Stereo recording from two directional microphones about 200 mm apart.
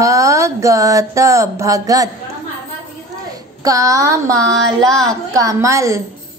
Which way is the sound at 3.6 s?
15° right (ahead or behind).